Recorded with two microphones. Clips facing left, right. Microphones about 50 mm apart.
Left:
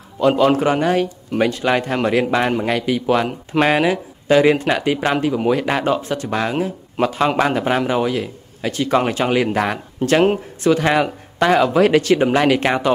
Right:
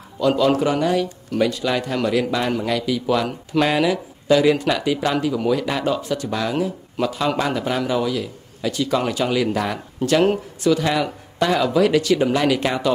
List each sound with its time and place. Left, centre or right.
0.2 s a man's voice: left